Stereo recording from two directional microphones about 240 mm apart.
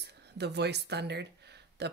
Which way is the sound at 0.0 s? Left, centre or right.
Right.